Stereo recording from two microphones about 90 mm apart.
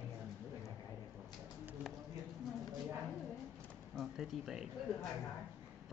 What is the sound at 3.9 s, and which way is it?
Speech, 5° right (ahead or behind).